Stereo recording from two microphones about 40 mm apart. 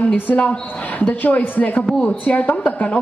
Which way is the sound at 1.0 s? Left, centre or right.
Left.